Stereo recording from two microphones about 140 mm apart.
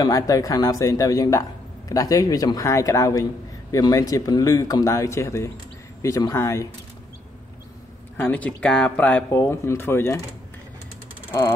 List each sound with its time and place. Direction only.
0.0 s speech: 25° left (ahead or behind)
8.2 s speech: 10° left (ahead or behind)